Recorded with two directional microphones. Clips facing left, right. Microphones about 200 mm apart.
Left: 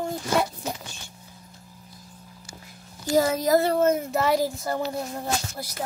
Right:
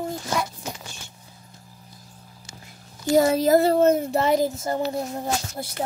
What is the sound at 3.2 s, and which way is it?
A child's voice, 30° right (ahead or behind).